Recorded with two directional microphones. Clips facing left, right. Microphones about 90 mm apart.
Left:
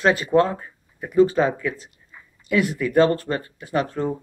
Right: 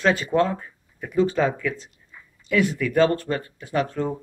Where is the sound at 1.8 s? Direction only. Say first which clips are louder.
Left 1 dB; 5° left (ahead or behind).